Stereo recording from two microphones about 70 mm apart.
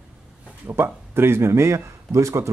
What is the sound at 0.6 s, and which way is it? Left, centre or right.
A man's voice, right.